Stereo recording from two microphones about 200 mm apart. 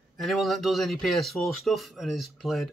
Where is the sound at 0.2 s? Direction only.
Centre (ahead or behind).